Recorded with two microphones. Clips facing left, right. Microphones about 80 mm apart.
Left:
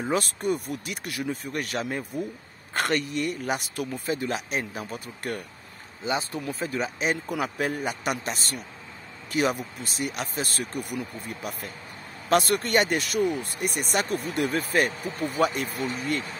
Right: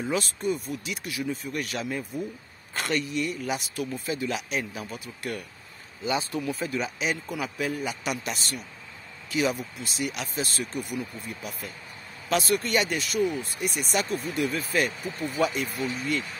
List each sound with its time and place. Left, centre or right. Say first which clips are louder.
0.0 s speech: left 2 dB; left
0.4 s speech: left 1 dB; left
6.0 s speech: right 1 dB; left